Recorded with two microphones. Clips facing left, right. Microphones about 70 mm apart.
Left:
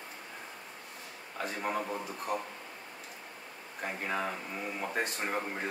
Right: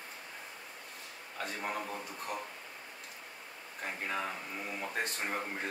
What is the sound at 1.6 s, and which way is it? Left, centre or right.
Speech, centre.